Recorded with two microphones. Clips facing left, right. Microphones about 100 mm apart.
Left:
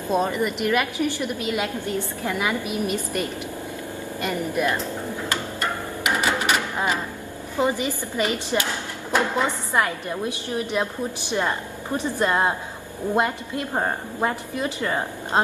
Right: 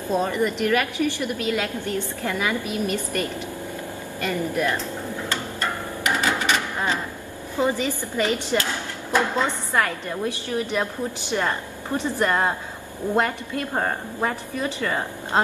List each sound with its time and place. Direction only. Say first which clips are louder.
0.1 s a woman's voice: even; 15° left (ahead or behind)
5.3 s a sound: left 1 dB; 15° left (ahead or behind)
7.5 s a woman's voice: even; 15° left (ahead or behind)